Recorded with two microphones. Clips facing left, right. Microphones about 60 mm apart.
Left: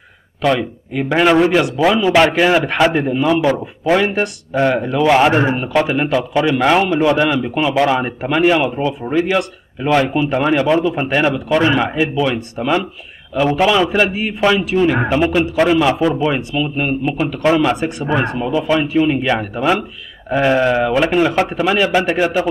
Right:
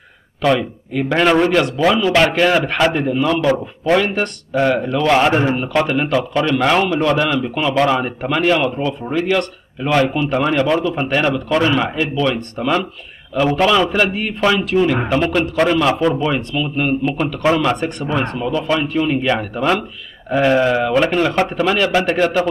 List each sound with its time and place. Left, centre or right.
0.4 s a man's voice: centre
2.0 s a man's voice: centre
16.3 s speech: centre